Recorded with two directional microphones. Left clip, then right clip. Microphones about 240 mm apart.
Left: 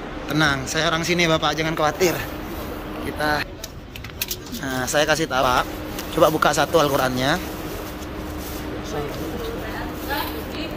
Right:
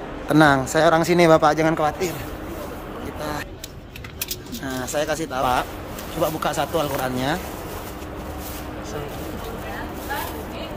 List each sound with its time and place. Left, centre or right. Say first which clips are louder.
0.3 s speech: right 5 dB; right; by 2.1 s centre
4.6 s speech: left 4 dB; centre